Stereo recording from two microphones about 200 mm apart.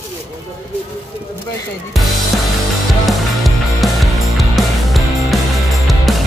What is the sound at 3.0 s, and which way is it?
Music, centre (ahead or behind).